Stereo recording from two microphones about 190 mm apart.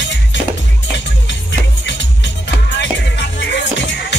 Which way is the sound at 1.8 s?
70° left (ahead or behind).